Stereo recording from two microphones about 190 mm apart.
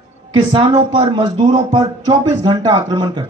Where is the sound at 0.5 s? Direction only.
30° right (ahead or behind).